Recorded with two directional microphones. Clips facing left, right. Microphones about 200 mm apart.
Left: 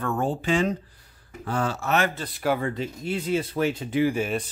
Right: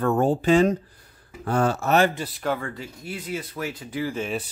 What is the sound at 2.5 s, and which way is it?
Speech, 20° left (ahead or behind).